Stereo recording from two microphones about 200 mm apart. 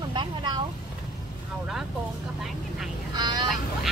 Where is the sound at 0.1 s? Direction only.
25° right (ahead or behind).